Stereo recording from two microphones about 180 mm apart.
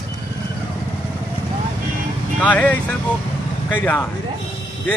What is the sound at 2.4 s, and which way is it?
A man's voice, 10° left (ahead or behind).